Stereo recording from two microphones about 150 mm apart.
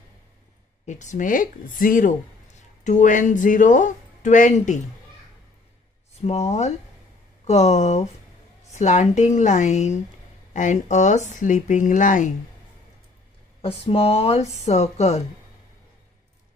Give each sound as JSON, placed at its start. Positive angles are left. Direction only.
{"t": 0.8, "sound": "speech", "side_deg": 55}
{"t": 6.2, "sound": "speech", "side_deg": 45}
{"t": 13.6, "sound": "speech", "side_deg": 40}